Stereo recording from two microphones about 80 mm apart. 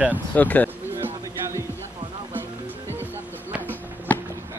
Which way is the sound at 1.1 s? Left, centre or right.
Right.